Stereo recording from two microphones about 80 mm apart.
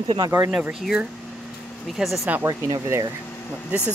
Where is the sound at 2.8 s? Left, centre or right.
Right.